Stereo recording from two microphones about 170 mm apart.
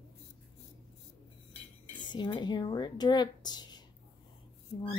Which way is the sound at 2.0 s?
25° left (ahead or behind).